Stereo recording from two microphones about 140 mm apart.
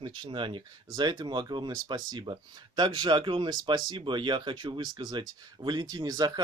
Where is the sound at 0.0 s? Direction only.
35° right (ahead or behind).